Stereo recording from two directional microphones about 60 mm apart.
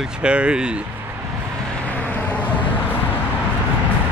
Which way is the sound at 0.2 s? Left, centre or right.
Centre.